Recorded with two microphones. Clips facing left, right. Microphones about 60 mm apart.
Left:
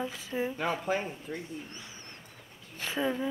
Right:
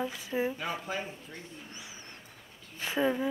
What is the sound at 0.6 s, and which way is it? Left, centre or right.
Speech, left.